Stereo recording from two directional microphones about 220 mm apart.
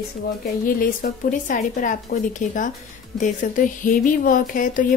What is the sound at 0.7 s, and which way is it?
Speech, 40° left (ahead or behind).